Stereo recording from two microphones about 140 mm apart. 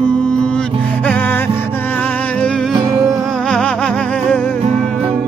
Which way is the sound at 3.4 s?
5° left (ahead or behind).